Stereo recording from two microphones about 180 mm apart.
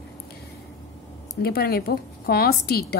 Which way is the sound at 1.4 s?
60° left (ahead or behind).